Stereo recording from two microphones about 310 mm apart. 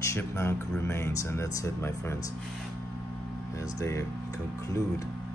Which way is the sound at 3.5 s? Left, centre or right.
Centre.